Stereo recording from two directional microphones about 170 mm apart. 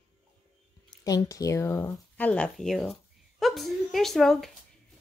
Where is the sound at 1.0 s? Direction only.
20° left (ahead or behind).